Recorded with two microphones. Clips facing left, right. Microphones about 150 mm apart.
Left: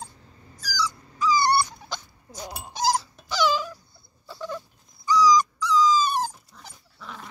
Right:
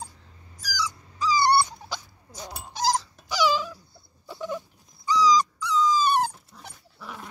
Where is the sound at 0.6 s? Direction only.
20° right (ahead or behind).